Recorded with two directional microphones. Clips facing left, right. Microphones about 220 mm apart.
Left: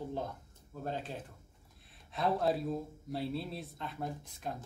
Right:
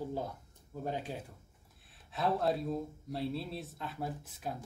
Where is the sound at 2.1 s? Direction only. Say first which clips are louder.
Even; centre (ahead or behind).